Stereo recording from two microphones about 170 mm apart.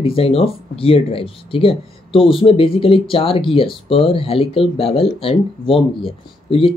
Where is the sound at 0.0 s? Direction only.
35° left (ahead or behind).